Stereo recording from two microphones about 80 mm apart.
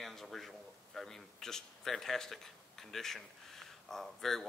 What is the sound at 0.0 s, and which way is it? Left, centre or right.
A man's voice, centre.